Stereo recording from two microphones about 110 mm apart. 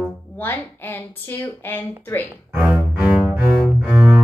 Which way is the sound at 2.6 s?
10° right (ahead or behind).